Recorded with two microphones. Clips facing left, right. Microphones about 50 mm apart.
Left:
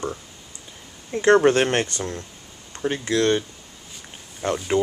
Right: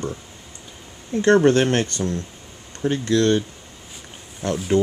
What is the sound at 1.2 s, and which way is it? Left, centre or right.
Speech, centre.